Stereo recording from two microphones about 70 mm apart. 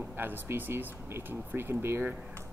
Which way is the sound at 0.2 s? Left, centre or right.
Right.